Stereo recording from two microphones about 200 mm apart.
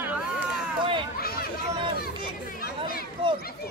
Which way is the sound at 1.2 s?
50° left (ahead or behind).